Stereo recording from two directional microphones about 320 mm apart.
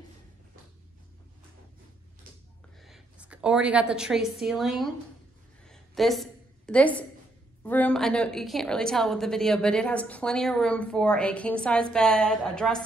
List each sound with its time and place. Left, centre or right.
2.8 s a woman's voice: centre
5.7 s a sound: centre
7.6 s a woman's voice: centre